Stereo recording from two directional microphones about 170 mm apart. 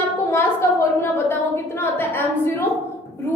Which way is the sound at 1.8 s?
15° left (ahead or behind).